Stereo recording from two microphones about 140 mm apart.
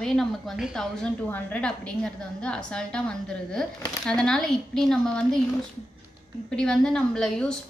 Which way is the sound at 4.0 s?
5° left (ahead or behind).